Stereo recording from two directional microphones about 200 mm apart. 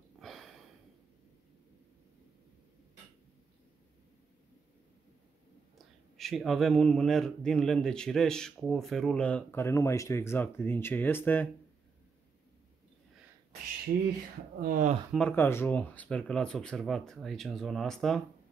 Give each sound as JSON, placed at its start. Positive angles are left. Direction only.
{"t": 0.2, "sound": "a sound", "side_deg": 0}
{"t": 6.1, "sound": "a man's voice", "side_deg": 0}
{"t": 14.6, "sound": "speech", "side_deg": -40}
{"t": 15.1, "sound": "a man's voice", "side_deg": 10}